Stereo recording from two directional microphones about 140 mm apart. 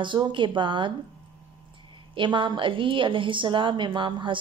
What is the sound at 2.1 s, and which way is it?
A woman's voice, 35° right (ahead or behind).